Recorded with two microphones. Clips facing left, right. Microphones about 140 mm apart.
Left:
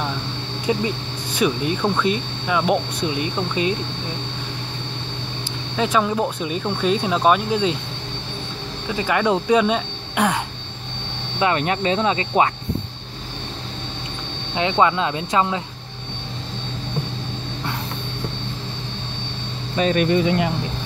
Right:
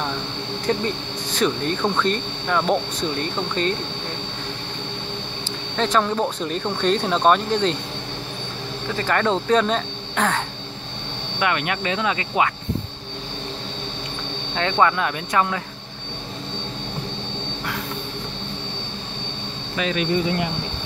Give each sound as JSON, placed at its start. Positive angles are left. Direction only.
{"t": 0.7, "sound": "speech", "side_deg": 10}
{"t": 5.8, "sound": "speech", "side_deg": 5}
{"t": 8.8, "sound": "speech", "side_deg": 10}
{"t": 11.3, "sound": "speech", "side_deg": 30}
{"t": 14.5, "sound": "speech", "side_deg": 15}
{"t": 19.8, "sound": "speech", "side_deg": 40}